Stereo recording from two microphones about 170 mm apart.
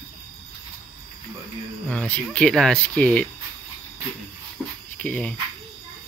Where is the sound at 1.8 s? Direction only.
10° left (ahead or behind).